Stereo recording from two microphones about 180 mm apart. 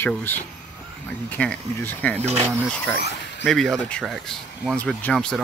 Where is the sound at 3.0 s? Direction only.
70° left (ahead or behind).